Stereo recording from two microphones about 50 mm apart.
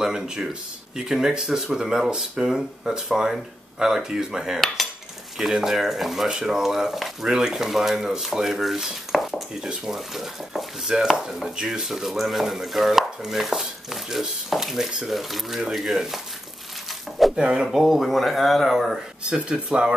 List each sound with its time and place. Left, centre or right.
0.0 s speech: centre
4.8 s cutlery: centre
5.4 s stir: centre
6.2 s speech: centre
11.8 s stir: centre
17.4 s speech: centre
17.6 s stir: centre
19.5 s speech: centre